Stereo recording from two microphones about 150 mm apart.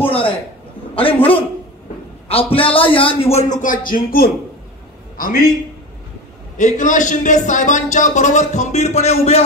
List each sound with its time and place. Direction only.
0.0 s a man's voice: 35° left (ahead or behind)
3.6 s speech: 65° left (ahead or behind)
5.1 s a man's voice: 60° left (ahead or behind)
6.5 s a man's voice: 60° left (ahead or behind)